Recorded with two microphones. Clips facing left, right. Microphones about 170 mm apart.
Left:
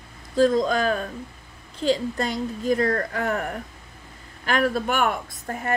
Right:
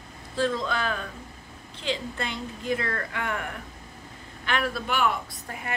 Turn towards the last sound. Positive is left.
turn(degrees=45)  # may be behind; listen again after turning